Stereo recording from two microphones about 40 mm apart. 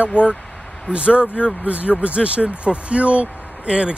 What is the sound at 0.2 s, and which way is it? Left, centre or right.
Speech, left.